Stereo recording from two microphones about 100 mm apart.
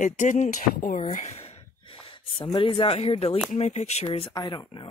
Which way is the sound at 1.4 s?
80° left.